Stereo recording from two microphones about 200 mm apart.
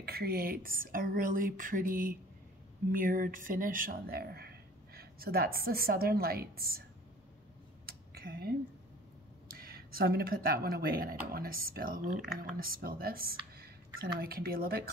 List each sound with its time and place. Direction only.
0.0 s speech: 50° right (ahead or behind)
7.8 s a sound: 50° right (ahead or behind)
9.5 s speech: 50° right (ahead or behind)